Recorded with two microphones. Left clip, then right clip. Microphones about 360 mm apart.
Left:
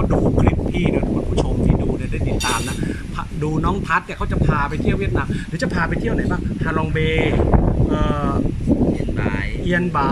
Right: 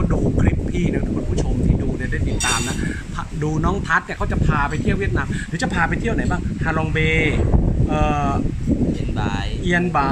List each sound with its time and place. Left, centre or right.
3.4 s speech: centre
7.2 s speech: left
7.9 s speech: centre
9.7 s speech: centre